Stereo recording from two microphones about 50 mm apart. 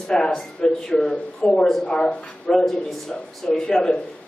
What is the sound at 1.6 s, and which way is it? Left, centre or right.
Speech, centre.